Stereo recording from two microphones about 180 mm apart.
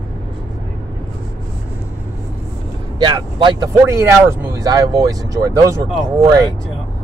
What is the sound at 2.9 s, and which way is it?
Speech, 25° right (ahead or behind).